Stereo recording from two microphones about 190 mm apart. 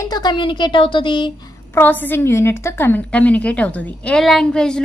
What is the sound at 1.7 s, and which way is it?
A woman's voice, 10° left (ahead or behind).